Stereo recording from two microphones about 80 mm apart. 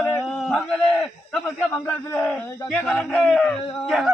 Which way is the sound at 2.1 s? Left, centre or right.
Centre.